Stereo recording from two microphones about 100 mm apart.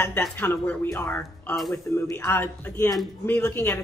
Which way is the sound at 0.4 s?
20° left (ahead or behind).